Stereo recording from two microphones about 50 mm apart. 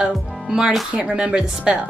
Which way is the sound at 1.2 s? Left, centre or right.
Centre.